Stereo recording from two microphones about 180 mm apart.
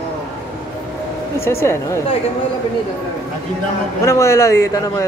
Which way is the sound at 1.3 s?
15° left (ahead or behind).